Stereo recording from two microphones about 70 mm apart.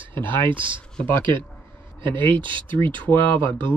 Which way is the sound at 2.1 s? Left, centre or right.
Left.